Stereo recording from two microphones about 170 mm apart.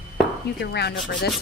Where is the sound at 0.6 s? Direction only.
75° left (ahead or behind).